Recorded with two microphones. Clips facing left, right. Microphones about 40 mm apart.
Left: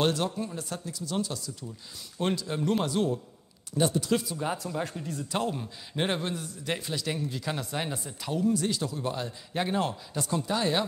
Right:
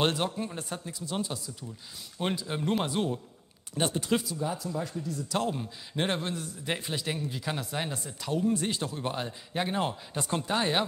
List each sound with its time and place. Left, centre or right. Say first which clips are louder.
0.0 s speech: left 1 dB; right
2.8 s speech: left 2 dB; right
3.7 s speech: left 3 dB; right
4.4 s speech: left 1 dB; left
4.7 s speech: left 1 dB; left
5.4 s speech: even; centre
6.6 s speech: left 1 dB; right
7.1 s speech: left 2 dB; centre
8.5 s speech: left 4 dB; right
9.5 s speech: left 2 dB; centre
10.1 s speech: even; right